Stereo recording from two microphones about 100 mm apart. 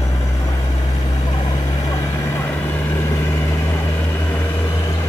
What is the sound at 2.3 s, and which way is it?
Vehicle, 20° left (ahead or behind).